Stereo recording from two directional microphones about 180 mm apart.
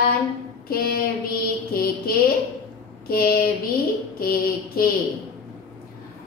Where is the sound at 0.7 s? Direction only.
55° left (ahead or behind).